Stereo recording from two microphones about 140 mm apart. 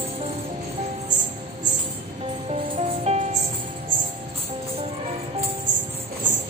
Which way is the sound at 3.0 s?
50° right (ahead or behind).